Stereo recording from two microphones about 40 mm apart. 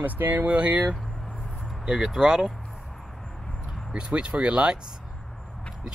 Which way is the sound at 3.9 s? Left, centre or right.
Right.